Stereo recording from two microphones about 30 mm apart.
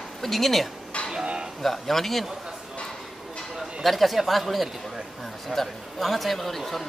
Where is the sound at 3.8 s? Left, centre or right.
Centre.